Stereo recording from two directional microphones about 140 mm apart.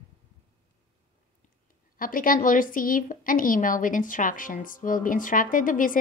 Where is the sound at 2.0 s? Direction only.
90° left.